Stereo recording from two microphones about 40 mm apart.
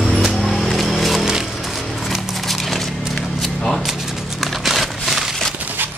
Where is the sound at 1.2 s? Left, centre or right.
Centre.